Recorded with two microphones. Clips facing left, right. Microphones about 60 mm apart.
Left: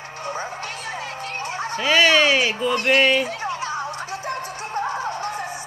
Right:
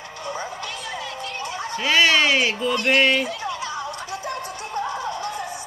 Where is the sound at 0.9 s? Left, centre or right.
Left.